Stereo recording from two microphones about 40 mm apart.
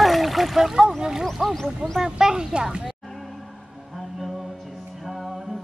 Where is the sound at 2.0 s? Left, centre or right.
Centre.